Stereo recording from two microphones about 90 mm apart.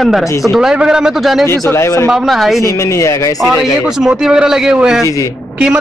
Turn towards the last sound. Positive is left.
turn(degrees=-10)  # may be behind; listen again after turning